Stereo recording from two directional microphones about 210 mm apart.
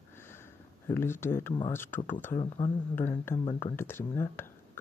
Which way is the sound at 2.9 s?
10° left (ahead or behind).